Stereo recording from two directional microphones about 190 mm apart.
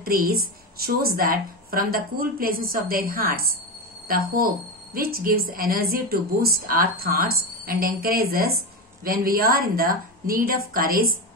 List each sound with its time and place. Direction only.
0.0 s a woman's voice: 50° right (ahead or behind)